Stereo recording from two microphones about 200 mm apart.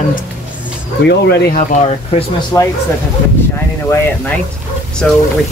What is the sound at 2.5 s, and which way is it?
Speech, 15° left (ahead or behind).